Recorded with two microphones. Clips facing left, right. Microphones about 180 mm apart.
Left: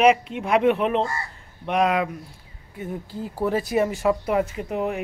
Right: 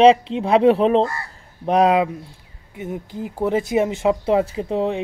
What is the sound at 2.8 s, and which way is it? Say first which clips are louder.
Speech: right 3 dB; 20° right (ahead or behind).